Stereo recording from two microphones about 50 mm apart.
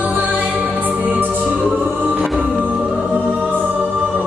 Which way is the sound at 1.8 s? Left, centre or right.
Right.